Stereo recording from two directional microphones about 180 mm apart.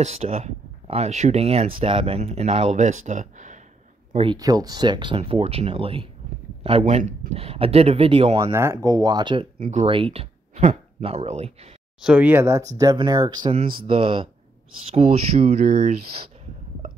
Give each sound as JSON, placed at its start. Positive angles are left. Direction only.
{"t": 0.0, "sound": "speech", "side_deg": -35}
{"t": 4.1, "sound": "speech", "side_deg": -30}
{"t": 4.4, "sound": "speech", "side_deg": -20}
{"t": 8.4, "sound": "speech", "side_deg": -15}
{"t": 9.6, "sound": "speech", "side_deg": -40}
{"t": 12.0, "sound": "speech", "side_deg": -5}